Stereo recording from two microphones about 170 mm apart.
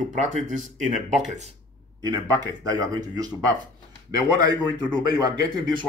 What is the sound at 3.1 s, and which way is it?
Speech, 25° right (ahead or behind).